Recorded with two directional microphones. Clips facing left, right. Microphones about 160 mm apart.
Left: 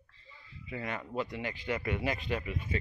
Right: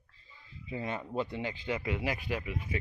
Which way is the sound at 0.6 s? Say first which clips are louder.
Right 2 dB; 25° right (ahead or behind).